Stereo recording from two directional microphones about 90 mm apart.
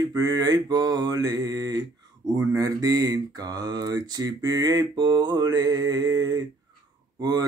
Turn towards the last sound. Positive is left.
turn(degrees=-45)  # may be behind; listen again after turning